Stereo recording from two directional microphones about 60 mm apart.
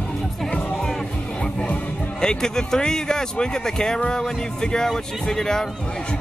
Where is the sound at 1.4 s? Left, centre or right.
Centre.